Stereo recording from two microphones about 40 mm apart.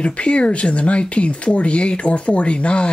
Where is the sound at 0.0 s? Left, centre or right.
Left.